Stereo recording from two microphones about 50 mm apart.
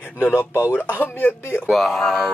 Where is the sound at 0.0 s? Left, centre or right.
Left.